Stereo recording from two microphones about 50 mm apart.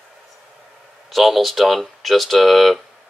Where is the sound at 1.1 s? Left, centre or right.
Centre.